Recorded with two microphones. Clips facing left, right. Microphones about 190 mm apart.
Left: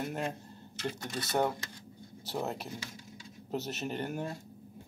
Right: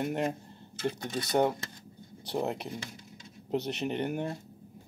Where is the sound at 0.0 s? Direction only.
20° right (ahead or behind).